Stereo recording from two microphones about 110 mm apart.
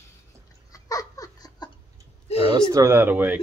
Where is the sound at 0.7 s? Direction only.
30° left (ahead or behind).